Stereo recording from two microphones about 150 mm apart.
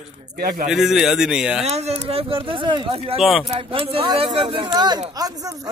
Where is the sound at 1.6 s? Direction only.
45° right (ahead or behind).